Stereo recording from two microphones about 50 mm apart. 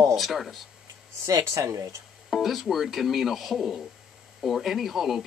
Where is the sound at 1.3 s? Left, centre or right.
Right.